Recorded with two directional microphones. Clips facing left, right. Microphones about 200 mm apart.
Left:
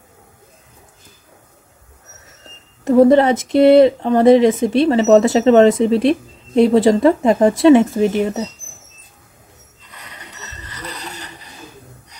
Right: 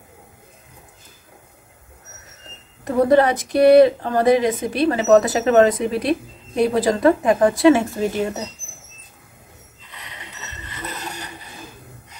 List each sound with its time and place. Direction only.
2.8 s speech: 25° left (ahead or behind)